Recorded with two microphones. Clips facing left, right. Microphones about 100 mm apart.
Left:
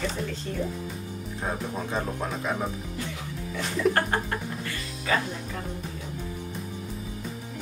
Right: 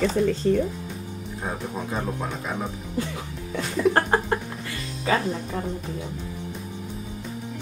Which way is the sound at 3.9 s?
30° right (ahead or behind).